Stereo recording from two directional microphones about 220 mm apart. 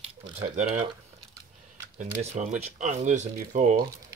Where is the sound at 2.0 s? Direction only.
35° right (ahead or behind).